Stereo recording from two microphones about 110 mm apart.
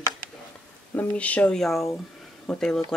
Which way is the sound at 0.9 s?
15° left (ahead or behind).